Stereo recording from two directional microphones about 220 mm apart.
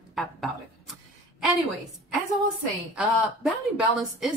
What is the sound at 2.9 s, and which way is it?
Speech, 5° right (ahead or behind).